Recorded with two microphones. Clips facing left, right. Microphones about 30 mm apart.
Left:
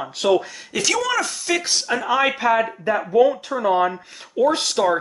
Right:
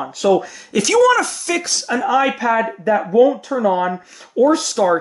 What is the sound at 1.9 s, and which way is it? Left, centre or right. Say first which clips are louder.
Speech: right 4 dB; left.